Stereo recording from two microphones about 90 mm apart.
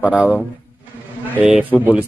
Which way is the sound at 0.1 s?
15° right (ahead or behind).